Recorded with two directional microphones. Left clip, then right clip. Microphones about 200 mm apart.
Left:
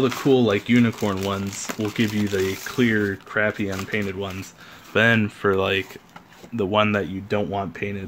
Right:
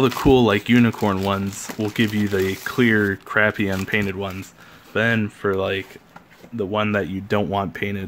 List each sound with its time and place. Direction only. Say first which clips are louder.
0.0 s speech: right 3 dB; 25° right (ahead or behind)
4.9 s speech: left 2 dB; 5° left (ahead or behind)
6.9 s speech: right 1 dB; 10° right (ahead or behind)
7.2 s speech: right 3 dB; 25° right (ahead or behind)